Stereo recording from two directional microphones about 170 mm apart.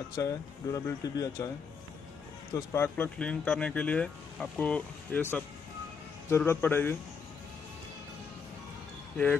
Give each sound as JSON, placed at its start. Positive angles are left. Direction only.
{"t": 0.1, "sound": "speech", "side_deg": 20}
{"t": 2.5, "sound": "speech", "side_deg": 15}